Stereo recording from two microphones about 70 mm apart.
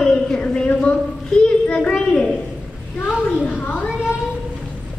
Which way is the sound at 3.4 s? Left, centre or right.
Left.